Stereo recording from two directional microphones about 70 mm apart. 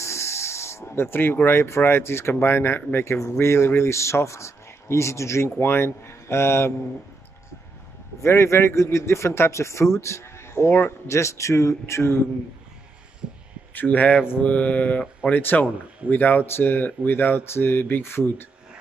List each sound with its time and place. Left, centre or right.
0.0 s speech: left
8.2 s speech: left
13.7 s speech: left